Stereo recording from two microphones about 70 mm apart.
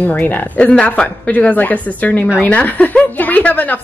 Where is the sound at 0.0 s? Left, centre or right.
Left.